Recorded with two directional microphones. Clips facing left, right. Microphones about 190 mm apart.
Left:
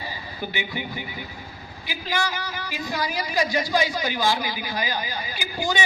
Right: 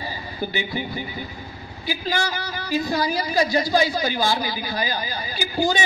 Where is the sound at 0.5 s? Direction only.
40° right (ahead or behind).